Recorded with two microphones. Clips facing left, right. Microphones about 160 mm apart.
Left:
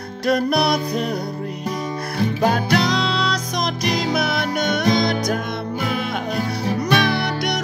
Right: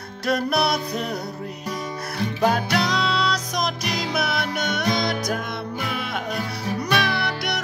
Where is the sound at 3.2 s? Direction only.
5° right (ahead or behind).